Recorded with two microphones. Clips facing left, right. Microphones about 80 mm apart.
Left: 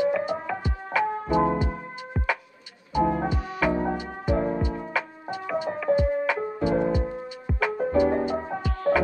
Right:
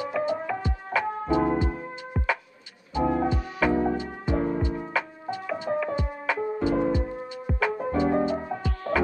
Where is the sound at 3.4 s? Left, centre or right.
Centre.